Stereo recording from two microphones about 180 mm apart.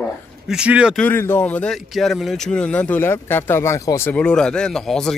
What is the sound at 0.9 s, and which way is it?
Speech, 10° left (ahead or behind).